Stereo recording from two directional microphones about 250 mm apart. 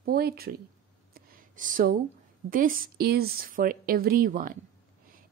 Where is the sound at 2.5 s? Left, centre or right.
Right.